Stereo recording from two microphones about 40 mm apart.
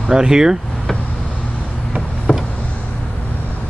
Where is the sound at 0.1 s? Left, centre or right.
Centre.